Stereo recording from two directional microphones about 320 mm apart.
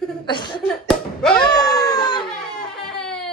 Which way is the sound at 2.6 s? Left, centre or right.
Centre.